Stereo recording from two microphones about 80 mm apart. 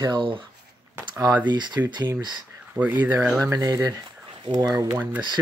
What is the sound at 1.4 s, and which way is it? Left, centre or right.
Speech, right.